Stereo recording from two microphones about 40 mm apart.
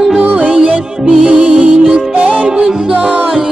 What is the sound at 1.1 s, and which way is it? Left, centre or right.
Music, centre.